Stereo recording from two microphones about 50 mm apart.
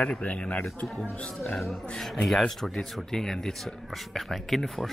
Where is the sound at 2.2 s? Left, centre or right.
Centre.